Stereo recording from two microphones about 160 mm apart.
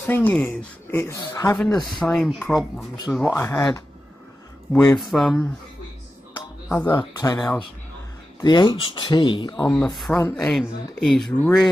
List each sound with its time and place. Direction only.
0.0 s speech: 10° left (ahead or behind)
1.9 s speech: 5° left (ahead or behind)
3.3 s speech: 20° left (ahead or behind)
4.7 s speech: 5° left (ahead or behind)
6.7 s speech: 15° left (ahead or behind)
9.7 s speech: 5° left (ahead or behind)